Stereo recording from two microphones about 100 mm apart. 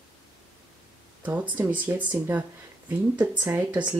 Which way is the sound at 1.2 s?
15° right (ahead or behind).